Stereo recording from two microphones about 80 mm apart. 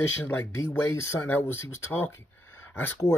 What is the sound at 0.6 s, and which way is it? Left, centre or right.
Speech, left.